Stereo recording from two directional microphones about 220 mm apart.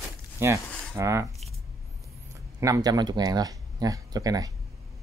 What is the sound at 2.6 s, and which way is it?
Speech, 15° right (ahead or behind).